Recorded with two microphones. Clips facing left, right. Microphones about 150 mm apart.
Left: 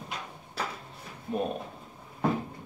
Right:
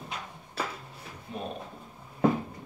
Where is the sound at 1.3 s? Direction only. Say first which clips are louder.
Left 8 dB; 50° left (ahead or behind).